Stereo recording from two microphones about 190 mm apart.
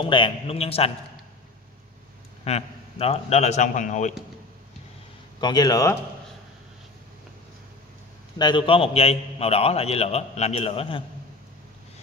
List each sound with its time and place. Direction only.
0.0 s a man's voice: 25° left (ahead or behind)
2.4 s a man's voice: 35° left (ahead or behind)
5.4 s a man's voice: 20° left (ahead or behind)
8.4 s a man's voice: 25° left (ahead or behind)